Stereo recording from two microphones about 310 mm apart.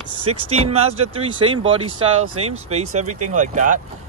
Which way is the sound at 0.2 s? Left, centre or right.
Centre.